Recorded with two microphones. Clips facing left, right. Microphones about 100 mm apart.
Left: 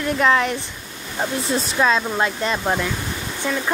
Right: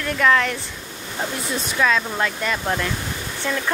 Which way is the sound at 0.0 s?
20° left (ahead or behind).